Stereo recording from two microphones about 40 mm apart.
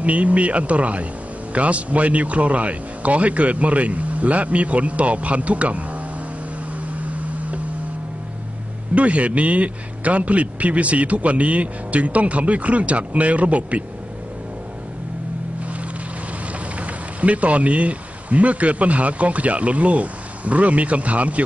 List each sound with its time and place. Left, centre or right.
0.0 s a man's voice: right
6.9 s a sound: right
8.9 s a man's voice: right
16.8 s speech: right